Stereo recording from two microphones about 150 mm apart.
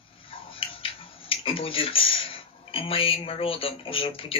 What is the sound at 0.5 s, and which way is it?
Speech, 40° left (ahead or behind).